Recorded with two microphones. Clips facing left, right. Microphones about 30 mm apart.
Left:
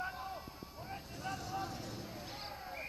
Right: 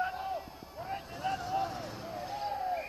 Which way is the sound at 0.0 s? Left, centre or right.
Right.